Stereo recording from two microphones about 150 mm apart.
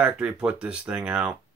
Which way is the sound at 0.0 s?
5° right (ahead or behind).